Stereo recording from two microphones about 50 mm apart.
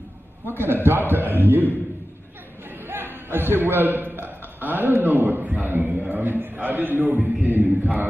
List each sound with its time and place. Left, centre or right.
0.5 s a man's voice: right
2.9 s a man's voice: right
7.4 s chant: right